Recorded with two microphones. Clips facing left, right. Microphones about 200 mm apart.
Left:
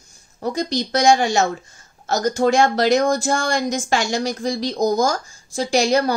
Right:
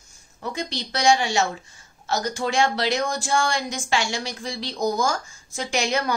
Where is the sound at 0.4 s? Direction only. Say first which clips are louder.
Left 8 dB; 40° left (ahead or behind).